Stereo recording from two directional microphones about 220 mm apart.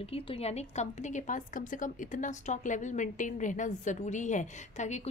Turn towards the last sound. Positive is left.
turn(degrees=35)  # may be behind; listen again after turning